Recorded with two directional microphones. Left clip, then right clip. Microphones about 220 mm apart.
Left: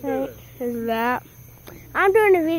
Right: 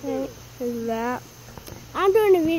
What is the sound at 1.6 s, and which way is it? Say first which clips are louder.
Speech: left 2 dB; 25° right (ahead or behind).